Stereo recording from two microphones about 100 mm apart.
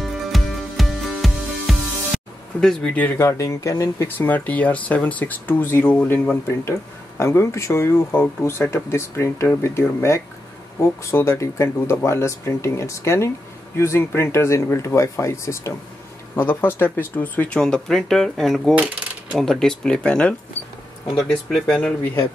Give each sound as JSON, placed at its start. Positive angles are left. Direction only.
{"t": 0.0, "sound": "music", "side_deg": 0}
{"t": 2.6, "sound": "speech", "side_deg": 10}
{"t": 3.1, "sound": "speech", "side_deg": 25}
{"t": 4.3, "sound": "speech", "side_deg": 15}